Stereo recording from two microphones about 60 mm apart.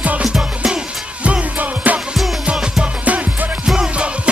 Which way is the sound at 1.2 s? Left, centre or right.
Right.